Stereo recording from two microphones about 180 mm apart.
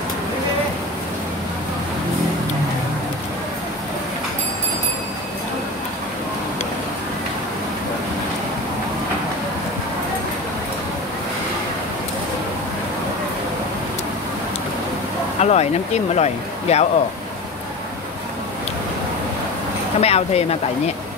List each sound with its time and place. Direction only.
15.4 s speech: 35° left (ahead or behind)
20.0 s speech: 35° left (ahead or behind)